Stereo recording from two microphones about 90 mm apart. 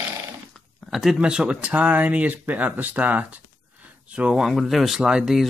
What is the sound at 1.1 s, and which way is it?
Speech, 10° right (ahead or behind).